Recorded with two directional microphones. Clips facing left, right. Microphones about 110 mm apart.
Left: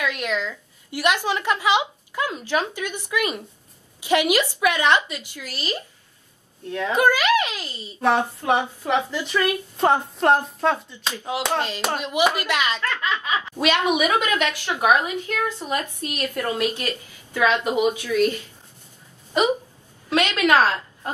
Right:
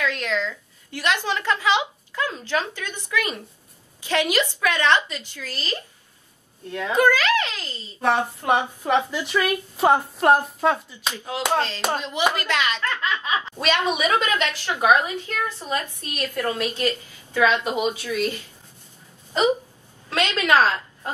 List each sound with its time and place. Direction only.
0.0 s a woman's voice: 15° left (ahead or behind)
6.9 s a woman's voice: 15° left (ahead or behind)
8.0 s a woman's voice: centre (ahead or behind)
11.1 s a woman's voice: 15° left (ahead or behind)
20.1 s a woman's voice: 15° left (ahead or behind)